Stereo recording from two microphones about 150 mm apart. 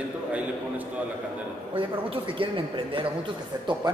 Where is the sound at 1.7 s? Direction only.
35° right (ahead or behind).